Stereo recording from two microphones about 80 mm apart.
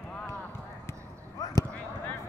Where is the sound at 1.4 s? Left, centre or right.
Left.